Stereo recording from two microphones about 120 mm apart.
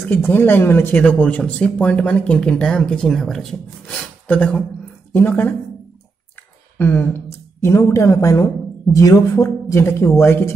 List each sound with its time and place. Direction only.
0.1 s speech: 20° left (ahead or behind)